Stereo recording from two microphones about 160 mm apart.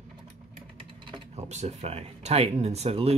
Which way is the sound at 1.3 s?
45° right (ahead or behind).